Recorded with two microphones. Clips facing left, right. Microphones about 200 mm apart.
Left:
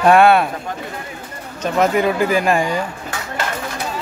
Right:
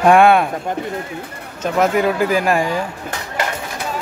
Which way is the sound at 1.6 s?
5° right (ahead or behind).